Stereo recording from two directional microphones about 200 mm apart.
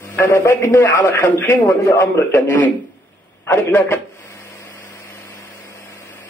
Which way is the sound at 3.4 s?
10° left (ahead or behind).